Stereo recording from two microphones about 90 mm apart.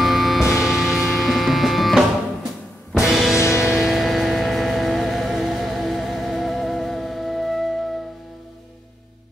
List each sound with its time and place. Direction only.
0.0 s music: centre (ahead or behind)
3.3 s music: 30° left (ahead or behind)
3.6 s music: 5° right (ahead or behind)